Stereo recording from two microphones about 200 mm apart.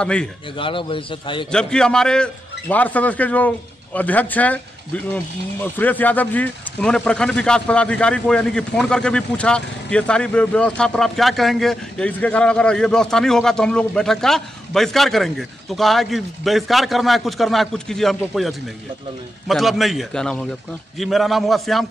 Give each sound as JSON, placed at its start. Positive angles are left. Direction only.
{"t": 0.0, "sound": "speech", "side_deg": 5}
{"t": 0.6, "sound": "a man's voice", "side_deg": 25}
{"t": 1.5, "sound": "a man's voice", "side_deg": 5}